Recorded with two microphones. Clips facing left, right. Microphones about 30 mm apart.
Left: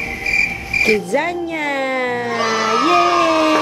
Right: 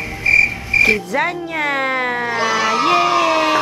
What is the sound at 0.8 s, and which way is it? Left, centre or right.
Music, centre.